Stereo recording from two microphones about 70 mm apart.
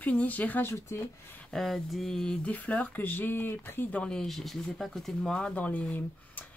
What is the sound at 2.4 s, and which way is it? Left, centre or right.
Speech, left.